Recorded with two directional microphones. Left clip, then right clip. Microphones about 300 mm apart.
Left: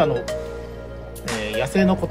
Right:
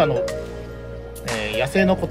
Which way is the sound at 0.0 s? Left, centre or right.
Centre.